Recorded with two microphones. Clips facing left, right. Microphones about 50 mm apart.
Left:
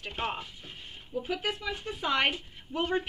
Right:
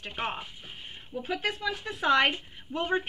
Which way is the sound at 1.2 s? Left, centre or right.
Right.